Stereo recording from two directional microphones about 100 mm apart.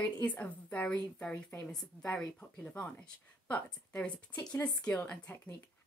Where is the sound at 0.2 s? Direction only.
15° left (ahead or behind).